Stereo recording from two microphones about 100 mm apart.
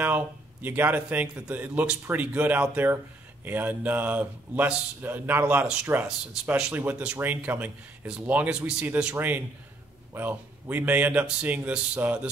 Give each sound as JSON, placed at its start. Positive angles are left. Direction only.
{"t": 0.0, "sound": "a man's voice", "side_deg": -20}